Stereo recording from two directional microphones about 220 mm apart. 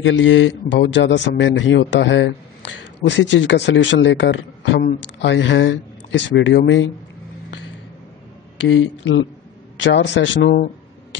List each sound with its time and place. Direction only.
0.0 s speech: 60° left (ahead or behind)
8.5 s speech: 60° left (ahead or behind)